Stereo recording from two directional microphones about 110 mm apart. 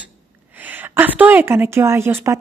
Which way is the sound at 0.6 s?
15° right (ahead or behind).